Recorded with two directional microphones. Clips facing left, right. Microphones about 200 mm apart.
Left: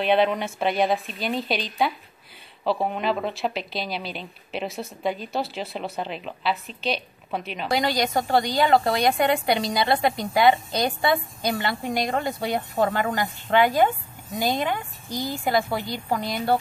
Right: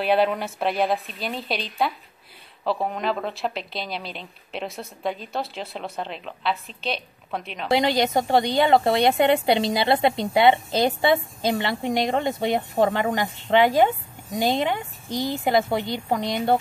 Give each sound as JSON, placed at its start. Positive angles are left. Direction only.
{"t": 0.0, "sound": "a woman's voice", "side_deg": -5}
{"t": 7.7, "sound": "a woman's voice", "side_deg": -25}